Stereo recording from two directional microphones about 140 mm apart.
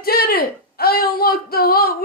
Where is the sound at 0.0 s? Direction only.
90° left.